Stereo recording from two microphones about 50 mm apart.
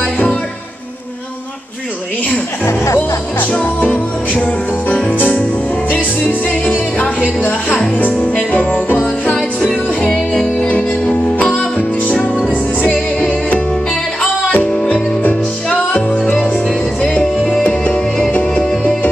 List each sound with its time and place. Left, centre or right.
2.6 s speech: left
3.6 s music: left
7.3 s speech: left
7.9 s music: left
8.5 s jingle bell: left
9.6 s music: centre
10.7 s music: left
14.5 s music: left
17.6 s music: left